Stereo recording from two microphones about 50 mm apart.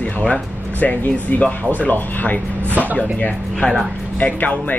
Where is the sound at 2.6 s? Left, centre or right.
Right.